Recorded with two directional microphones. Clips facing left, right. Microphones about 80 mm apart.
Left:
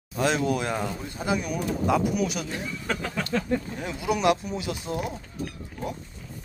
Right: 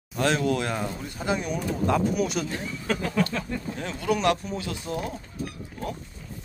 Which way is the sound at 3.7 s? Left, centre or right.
Centre.